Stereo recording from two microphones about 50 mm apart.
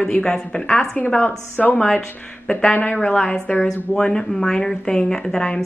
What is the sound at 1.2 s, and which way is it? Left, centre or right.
Speech, left.